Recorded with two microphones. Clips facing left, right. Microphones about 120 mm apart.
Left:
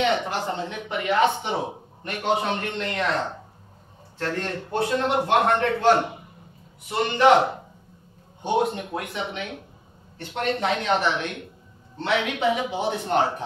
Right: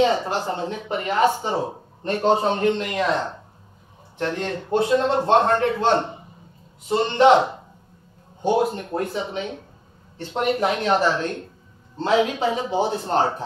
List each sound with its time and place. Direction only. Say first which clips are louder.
0.0 s a man's voice: right 3 dB; 35° right (ahead or behind)
8.4 s a man's voice: right 3 dB; 40° right (ahead or behind)
10.6 s speech: right 2 dB; 35° right (ahead or behind)